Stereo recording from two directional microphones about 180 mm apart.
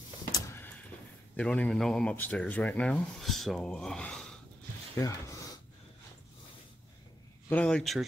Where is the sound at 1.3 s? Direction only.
5° left (ahead or behind).